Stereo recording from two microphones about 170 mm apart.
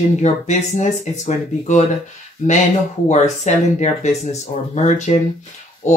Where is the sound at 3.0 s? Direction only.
45° left (ahead or behind).